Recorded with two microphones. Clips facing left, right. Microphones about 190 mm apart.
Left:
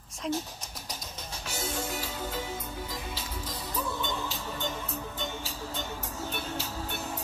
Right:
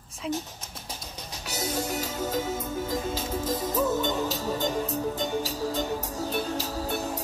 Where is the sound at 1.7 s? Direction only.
40° right (ahead or behind).